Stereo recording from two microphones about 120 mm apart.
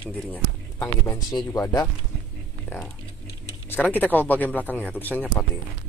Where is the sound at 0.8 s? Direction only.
30° left (ahead or behind).